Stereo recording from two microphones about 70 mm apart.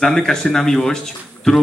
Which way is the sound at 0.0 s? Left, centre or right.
Centre.